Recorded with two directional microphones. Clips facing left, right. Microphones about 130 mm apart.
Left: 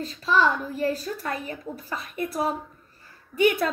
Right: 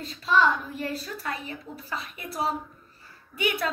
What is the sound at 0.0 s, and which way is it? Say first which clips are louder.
A woman's voice: left 1 dB; 45° left (ahead or behind).